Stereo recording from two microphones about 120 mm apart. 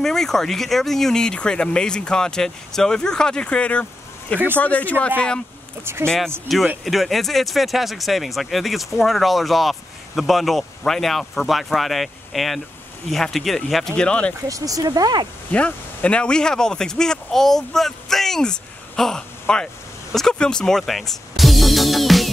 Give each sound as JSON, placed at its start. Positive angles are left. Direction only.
{"t": 0.0, "sound": "speech", "side_deg": 5}
{"t": 14.5, "sound": "speech", "side_deg": -30}
{"t": 15.5, "sound": "speech", "side_deg": 10}